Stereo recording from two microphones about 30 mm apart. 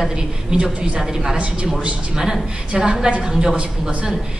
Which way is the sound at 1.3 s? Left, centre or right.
Right.